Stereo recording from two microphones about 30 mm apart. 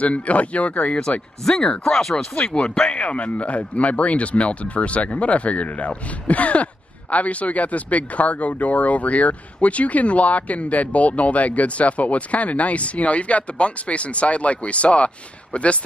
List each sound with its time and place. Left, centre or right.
0.0 s speech: left
1.5 s speech: left
2.3 s speech: left